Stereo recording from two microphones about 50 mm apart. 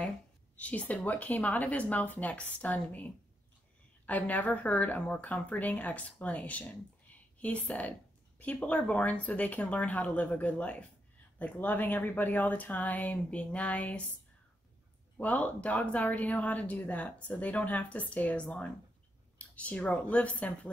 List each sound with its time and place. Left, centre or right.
0.6 s speech: left
15.1 s speech: left